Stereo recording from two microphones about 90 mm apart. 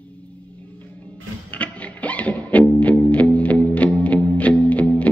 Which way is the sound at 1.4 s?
15° left (ahead or behind).